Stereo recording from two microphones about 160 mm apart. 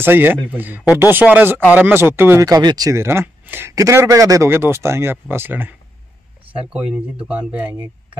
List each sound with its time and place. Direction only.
0.0 s speech: 15° right (ahead or behind)